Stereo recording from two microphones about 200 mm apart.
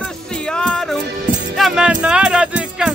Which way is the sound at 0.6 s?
5° left (ahead or behind).